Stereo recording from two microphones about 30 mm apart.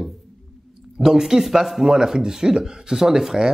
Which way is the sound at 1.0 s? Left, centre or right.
Centre.